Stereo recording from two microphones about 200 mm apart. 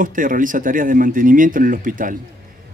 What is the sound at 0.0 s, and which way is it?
Speech, 40° right (ahead or behind).